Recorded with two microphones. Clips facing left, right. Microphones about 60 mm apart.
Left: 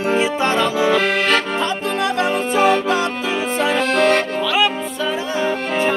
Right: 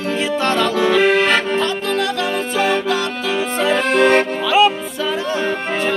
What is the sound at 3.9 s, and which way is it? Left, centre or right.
Accordion, right.